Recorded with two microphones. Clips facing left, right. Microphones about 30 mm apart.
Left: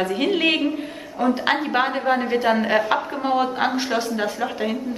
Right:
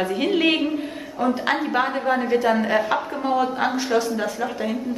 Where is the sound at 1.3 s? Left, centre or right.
Centre.